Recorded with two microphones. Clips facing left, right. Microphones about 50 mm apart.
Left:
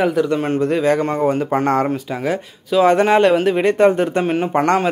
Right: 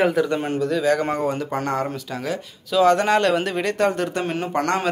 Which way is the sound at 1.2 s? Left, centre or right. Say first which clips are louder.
Left 7 dB; left.